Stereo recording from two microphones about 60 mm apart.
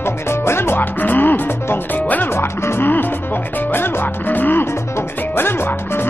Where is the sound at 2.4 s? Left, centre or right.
Left.